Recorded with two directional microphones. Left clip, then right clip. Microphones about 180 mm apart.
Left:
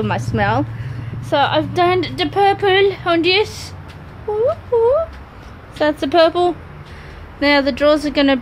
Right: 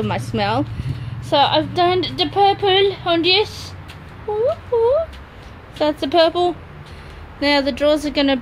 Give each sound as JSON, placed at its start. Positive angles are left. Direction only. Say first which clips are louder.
{"t": 0.0, "sound": "speech", "louder": "left 2 dB", "side_deg": -5}
{"t": 0.4, "sound": "speech", "louder": "left 2 dB", "side_deg": -20}
{"t": 1.3, "sound": "speech", "louder": "even", "side_deg": -5}
{"t": 4.7, "sound": "speech", "louder": "left 2 dB", "side_deg": 0}